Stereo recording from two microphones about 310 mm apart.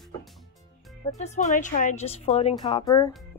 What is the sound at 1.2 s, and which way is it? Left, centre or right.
A woman's voice, left.